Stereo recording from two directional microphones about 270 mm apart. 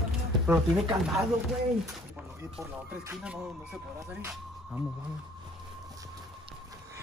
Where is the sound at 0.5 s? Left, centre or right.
Centre.